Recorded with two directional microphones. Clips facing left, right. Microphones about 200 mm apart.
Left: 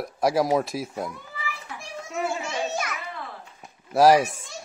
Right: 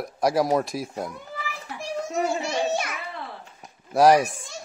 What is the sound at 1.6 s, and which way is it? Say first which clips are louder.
Children playing: right 7 dB; 40° right (ahead or behind).